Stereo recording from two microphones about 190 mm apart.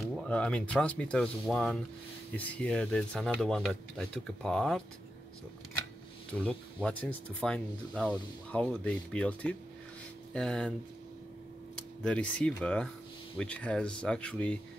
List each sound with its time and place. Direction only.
0.1 s speech: 5° left (ahead or behind)
6.4 s speech: 5° left (ahead or behind)
11.7 s speech: 5° left (ahead or behind)